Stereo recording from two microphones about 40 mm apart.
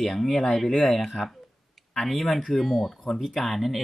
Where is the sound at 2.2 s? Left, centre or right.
Centre.